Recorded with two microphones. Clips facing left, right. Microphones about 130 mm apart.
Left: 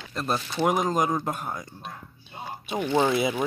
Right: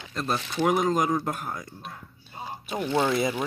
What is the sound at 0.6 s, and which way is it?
Speech, centre (ahead or behind).